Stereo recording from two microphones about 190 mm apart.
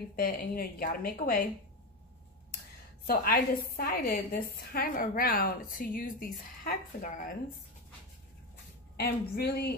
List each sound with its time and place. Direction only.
0.1 s a woman's voice: 50° left (ahead or behind)
3.1 s a woman's voice: 50° left (ahead or behind)
8.9 s a woman's voice: 55° left (ahead or behind)